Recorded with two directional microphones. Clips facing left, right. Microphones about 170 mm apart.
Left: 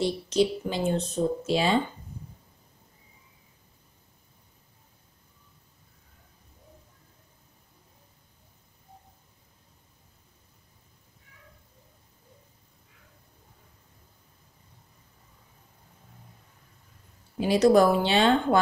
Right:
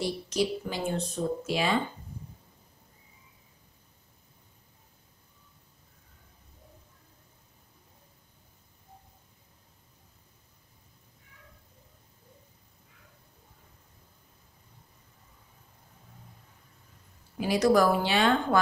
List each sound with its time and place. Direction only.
0.0 s speech: 25° left (ahead or behind)
17.4 s speech: 25° left (ahead or behind)